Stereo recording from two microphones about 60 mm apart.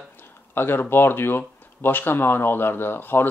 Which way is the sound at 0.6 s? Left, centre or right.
Left.